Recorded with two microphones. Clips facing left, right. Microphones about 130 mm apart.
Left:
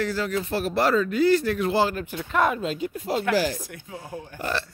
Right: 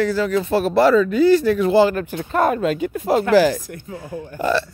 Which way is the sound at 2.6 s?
65° right (ahead or behind).